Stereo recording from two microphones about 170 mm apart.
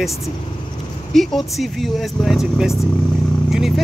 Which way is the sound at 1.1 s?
Centre (ahead or behind).